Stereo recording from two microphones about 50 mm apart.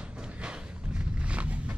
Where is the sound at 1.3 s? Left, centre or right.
Right.